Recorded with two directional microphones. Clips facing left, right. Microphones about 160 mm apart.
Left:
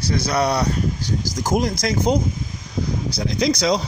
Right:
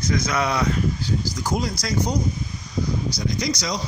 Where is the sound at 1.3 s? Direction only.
50° left (ahead or behind).